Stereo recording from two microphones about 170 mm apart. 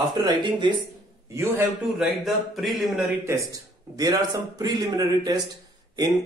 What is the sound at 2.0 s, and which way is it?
Speech, centre (ahead or behind).